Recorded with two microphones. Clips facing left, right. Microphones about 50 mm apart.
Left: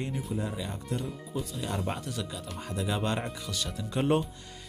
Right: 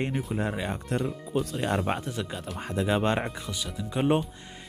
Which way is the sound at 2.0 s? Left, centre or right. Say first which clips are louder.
Right 3 dB; right.